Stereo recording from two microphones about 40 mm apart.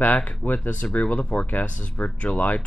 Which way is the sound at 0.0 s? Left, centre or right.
Left.